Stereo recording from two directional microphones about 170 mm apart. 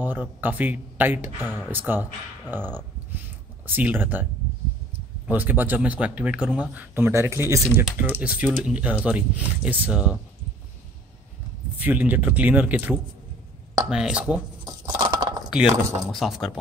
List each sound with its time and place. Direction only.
0.0 s speech: 10° right (ahead or behind)
2.5 s a sound: 10° right (ahead or behind)
3.6 s speech: 10° right (ahead or behind)
11.8 s speech: 10° right (ahead or behind)
15.0 s chink: 25° right (ahead or behind)
16.1 s speech: centre (ahead or behind)